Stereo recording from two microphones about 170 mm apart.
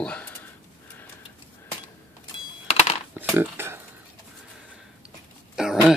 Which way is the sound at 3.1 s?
10° right (ahead or behind).